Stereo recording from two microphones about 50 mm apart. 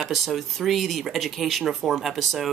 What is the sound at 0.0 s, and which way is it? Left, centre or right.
Speech, centre.